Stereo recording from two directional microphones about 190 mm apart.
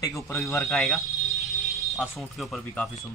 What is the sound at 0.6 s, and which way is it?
Speech, 5° left (ahead or behind).